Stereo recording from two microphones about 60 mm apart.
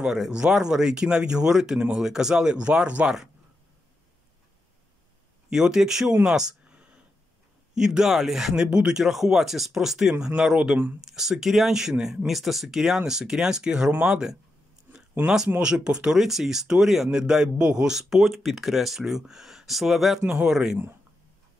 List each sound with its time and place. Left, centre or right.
0.0 s speech: centre
5.5 s speech: centre
6.2 s a sound: centre
7.7 s speech: centre
15.6 s speech: centre